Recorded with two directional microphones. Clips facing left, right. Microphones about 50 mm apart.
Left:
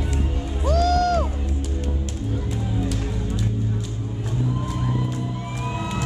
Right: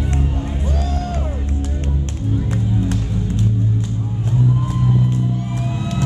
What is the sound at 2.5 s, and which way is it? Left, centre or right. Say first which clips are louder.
Music: right 5 dB; right.